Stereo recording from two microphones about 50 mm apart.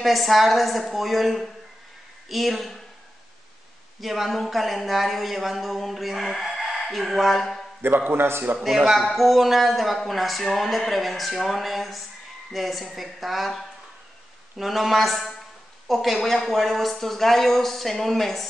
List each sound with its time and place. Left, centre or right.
0.0 s speech: centre
4.0 s speech: centre
8.1 s a man's voice: right
8.8 s speech: centre